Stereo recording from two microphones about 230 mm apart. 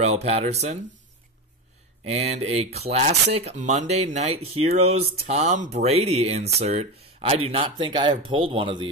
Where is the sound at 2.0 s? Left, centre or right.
Right.